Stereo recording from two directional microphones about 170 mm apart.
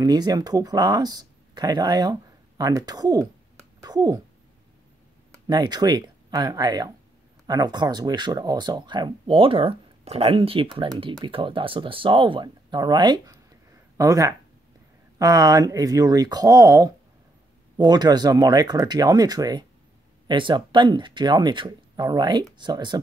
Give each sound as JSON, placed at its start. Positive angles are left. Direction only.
{"t": 0.0, "sound": "speech", "side_deg": -25}
{"t": 5.3, "sound": "speech", "side_deg": -25}